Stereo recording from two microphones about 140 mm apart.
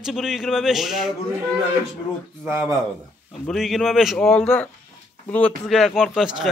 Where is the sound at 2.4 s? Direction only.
15° right (ahead or behind).